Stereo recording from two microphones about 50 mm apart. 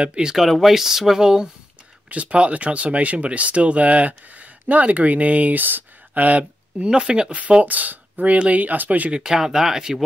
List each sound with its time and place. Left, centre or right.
0.0 s speech: centre
0.4 s speech: centre
2.0 s speech: right
6.9 s speech: centre; by 9.1 s right
9.1 s speech: centre